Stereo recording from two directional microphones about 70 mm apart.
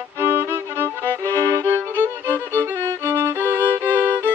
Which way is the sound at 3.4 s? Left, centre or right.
Right.